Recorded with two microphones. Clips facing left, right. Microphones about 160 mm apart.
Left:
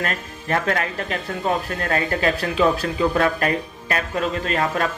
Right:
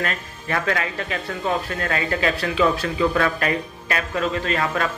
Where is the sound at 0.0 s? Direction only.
40° left (ahead or behind).